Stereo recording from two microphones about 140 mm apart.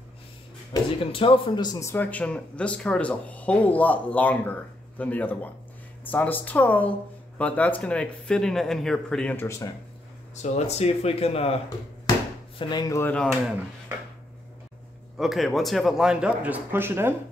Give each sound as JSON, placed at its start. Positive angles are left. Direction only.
{"t": 1.1, "sound": "a man's voice", "side_deg": 40}
{"t": 10.3, "sound": "speech", "side_deg": 55}
{"t": 12.5, "sound": "speech", "side_deg": 30}
{"t": 13.1, "sound": "speech", "side_deg": 5}
{"t": 15.1, "sound": "speech", "side_deg": 0}